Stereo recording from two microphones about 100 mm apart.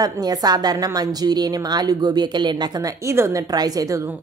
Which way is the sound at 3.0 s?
30° right (ahead or behind).